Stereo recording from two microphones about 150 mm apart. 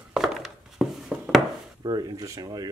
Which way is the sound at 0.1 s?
Centre (ahead or behind).